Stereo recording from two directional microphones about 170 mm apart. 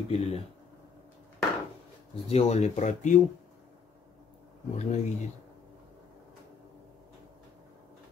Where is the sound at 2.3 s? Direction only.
40° left (ahead or behind).